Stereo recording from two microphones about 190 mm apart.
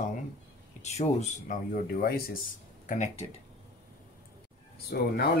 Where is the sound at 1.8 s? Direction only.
50° left (ahead or behind).